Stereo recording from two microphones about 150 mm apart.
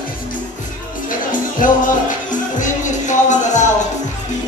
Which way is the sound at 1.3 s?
60° left (ahead or behind).